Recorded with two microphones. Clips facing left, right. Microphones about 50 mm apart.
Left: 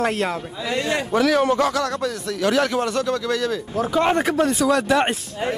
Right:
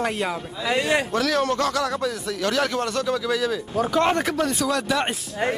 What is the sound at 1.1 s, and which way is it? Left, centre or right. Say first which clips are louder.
Speech: left 4 dB; centre.